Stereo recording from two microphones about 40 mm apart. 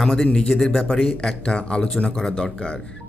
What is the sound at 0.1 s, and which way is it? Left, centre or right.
A man's voice, centre.